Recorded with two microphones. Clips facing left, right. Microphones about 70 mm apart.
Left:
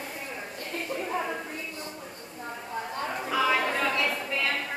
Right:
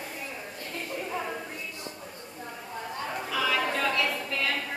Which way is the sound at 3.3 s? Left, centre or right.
Left.